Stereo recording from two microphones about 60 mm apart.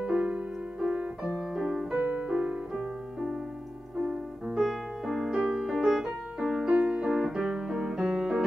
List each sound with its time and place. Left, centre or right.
0.0 s music: right
1.5 s music: centre
2.0 s music: centre
2.7 s music: centre